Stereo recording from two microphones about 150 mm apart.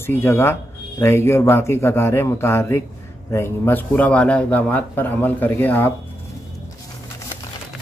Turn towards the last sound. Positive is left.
turn(degrees=15)  # may be behind; listen again after turning